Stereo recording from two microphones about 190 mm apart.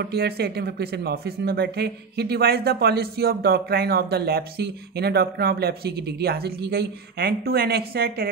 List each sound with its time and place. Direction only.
0.0 s speech: 55° right (ahead or behind)